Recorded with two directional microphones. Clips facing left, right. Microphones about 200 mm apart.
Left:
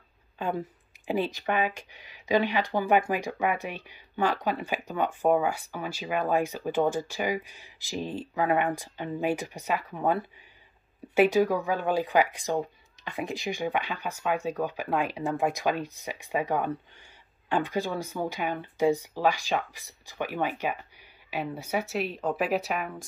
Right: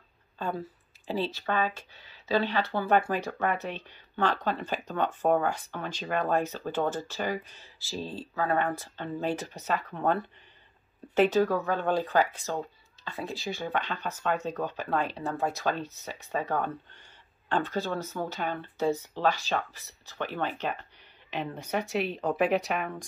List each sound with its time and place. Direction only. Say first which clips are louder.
1.0 s speech: left 3 dB; 15° left (ahead or behind)